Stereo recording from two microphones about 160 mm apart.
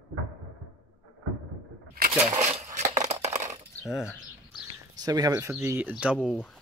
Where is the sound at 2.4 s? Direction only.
20° right (ahead or behind).